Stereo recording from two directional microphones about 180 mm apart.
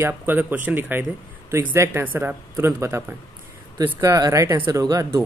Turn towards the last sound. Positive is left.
turn(degrees=-20)  # may be behind; listen again after turning